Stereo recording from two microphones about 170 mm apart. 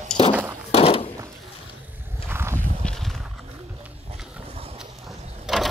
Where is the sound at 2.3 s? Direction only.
15° right (ahead or behind).